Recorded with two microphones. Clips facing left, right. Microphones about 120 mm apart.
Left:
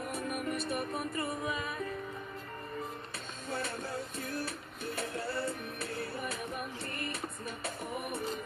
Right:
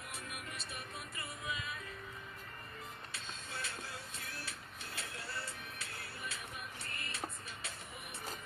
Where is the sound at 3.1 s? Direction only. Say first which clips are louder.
Left 9 dB; 50° left (ahead or behind).